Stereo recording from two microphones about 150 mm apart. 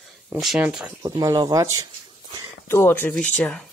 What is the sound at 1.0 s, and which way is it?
Speech, 25° right (ahead or behind).